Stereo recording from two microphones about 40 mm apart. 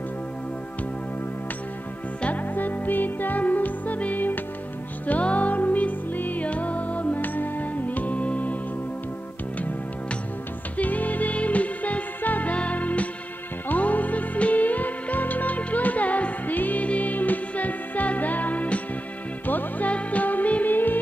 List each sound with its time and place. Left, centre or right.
2.2 s music: left
5.2 s music: left
7.2 s music: left
10.8 s music: left
19.4 s music: left
19.9 s music: left